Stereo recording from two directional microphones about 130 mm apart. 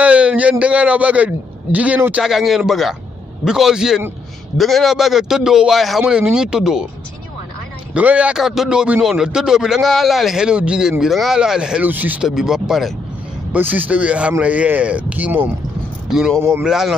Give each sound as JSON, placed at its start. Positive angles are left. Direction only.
{"t": 0.0, "sound": "a man's voice", "side_deg": -10}
{"t": 2.2, "sound": "a man's voice", "side_deg": 0}
{"t": 7.9, "sound": "a man's voice", "side_deg": -10}
{"t": 13.5, "sound": "a man's voice", "side_deg": -15}
{"t": 16.3, "sound": "a man's voice", "side_deg": -20}
{"t": 16.6, "sound": "a man's voice", "side_deg": -5}